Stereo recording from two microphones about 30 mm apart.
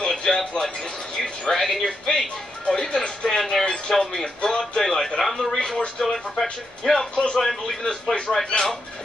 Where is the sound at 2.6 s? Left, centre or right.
Left.